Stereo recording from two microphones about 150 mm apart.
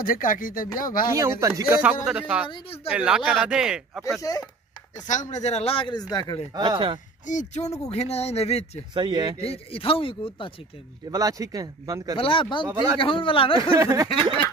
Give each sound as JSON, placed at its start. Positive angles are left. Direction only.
{"t": 0.0, "sound": "speech", "side_deg": 65}
{"t": 1.1, "sound": "speech", "side_deg": -20}
{"t": 1.7, "sound": "speech", "side_deg": -10}
{"t": 2.5, "sound": "speech", "side_deg": 40}
{"t": 2.9, "sound": "speech", "side_deg": -5}
{"t": 4.2, "sound": "speech", "side_deg": 25}
{"t": 5.0, "sound": "speech", "side_deg": 55}
{"t": 6.5, "sound": "speech", "side_deg": -30}
{"t": 7.2, "sound": "a man's voice", "side_deg": 55}
{"t": 8.9, "sound": "speech", "side_deg": -30}
{"t": 9.4, "sound": "speech", "side_deg": 40}
{"t": 11.1, "sound": "speech", "side_deg": -20}
{"t": 12.2, "sound": "speech", "side_deg": 35}
{"t": 13.6, "sound": "speech", "side_deg": -20}